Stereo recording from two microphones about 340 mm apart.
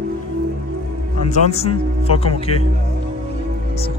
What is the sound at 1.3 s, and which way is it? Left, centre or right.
A man's voice, centre.